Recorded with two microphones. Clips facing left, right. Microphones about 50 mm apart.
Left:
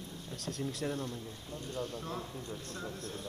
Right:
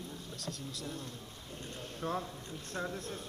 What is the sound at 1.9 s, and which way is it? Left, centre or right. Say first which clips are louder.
Speech: right 3 dB; right.